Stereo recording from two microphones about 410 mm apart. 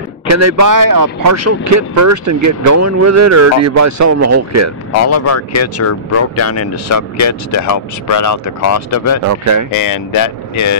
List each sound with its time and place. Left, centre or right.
0.3 s speech: right
5.0 s speech: left
9.3 s speech: right
9.8 s speech: left